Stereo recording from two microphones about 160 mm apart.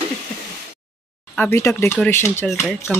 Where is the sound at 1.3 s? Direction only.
15° left (ahead or behind).